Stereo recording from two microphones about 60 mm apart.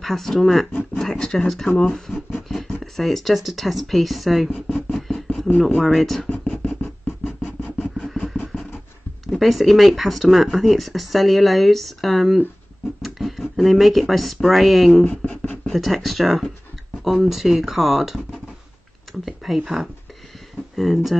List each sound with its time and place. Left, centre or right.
0.0 s speech: centre
1.1 s speech: centre
4.7 s a sound: centre
5.7 s speech: centre
6.2 s a sound: centre
7.4 s vehicle: centre
7.9 s vehicle: centre
9.4 s speech: centre
15.0 s a sound: left
15.6 s speech: centre